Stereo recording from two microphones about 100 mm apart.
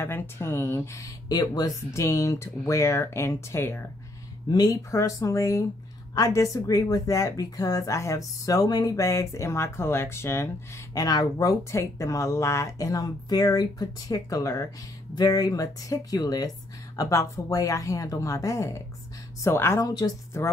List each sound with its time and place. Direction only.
0.0 s speech: 25° left (ahead or behind)
1.3 s speech: 40° left (ahead or behind); by 3.8 s 25° left (ahead or behind)
4.5 s speech: 40° left (ahead or behind)
11.1 s speech: 40° left (ahead or behind)